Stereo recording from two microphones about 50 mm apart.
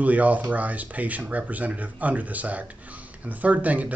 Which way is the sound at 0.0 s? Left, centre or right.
Right.